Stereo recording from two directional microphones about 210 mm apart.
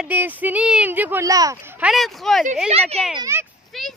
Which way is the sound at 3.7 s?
Centre (ahead or behind).